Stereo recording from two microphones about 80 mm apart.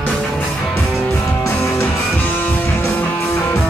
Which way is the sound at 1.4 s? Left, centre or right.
Left.